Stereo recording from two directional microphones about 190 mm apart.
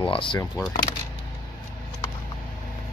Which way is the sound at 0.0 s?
25° left (ahead or behind).